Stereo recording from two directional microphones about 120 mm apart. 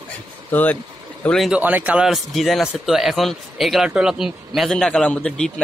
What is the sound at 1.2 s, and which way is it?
Speech, 5° left (ahead or behind).